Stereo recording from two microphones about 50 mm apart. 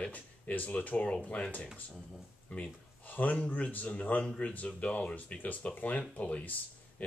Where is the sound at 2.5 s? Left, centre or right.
Left.